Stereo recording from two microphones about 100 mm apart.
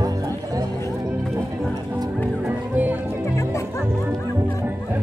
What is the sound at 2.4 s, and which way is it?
Music, 15° right (ahead or behind).